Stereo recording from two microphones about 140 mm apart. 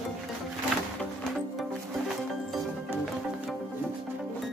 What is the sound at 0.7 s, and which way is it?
Music, centre (ahead or behind).